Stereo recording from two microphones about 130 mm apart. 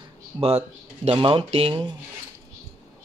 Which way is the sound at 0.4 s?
50° right (ahead or behind).